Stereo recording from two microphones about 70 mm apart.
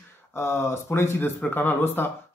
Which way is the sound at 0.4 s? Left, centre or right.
Left.